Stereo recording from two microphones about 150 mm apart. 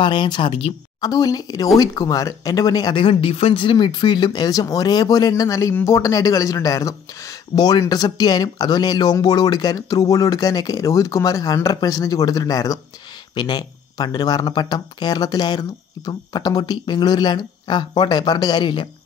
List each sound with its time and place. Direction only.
0.0 s speech: 30° left (ahead or behind)
1.0 s speech: 25° left (ahead or behind)